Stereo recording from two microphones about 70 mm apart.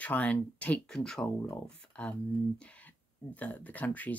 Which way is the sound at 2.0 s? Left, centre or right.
Centre.